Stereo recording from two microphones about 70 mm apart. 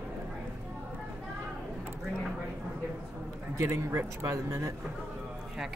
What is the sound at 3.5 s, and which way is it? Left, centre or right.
Speech, right.